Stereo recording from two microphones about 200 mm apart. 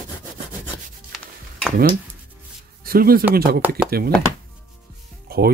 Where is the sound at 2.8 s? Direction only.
50° right (ahead or behind).